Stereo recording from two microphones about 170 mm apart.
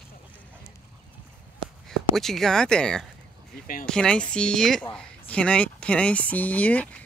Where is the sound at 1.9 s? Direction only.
Centre (ahead or behind).